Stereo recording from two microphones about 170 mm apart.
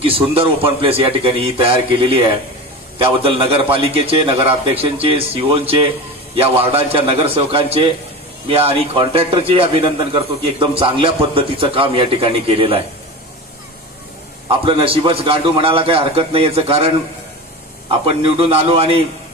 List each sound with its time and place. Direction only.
0.0 s a man's voice: 35° right (ahead or behind)
5.0 s a man's voice: 35° right (ahead or behind)
14.6 s a man's voice: 30° right (ahead or behind)